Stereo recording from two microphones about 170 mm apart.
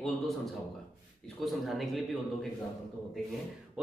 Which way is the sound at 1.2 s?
Centre (ahead or behind).